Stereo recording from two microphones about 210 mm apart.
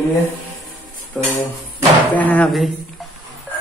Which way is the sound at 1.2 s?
5° left (ahead or behind).